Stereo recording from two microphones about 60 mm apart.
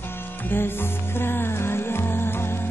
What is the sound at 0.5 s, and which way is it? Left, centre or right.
Music, left.